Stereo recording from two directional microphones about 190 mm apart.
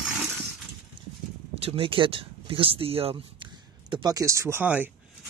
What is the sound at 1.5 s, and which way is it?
Speech, 30° right (ahead or behind).